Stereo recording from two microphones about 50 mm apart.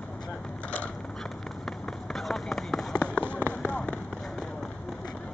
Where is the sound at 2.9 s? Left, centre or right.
Left.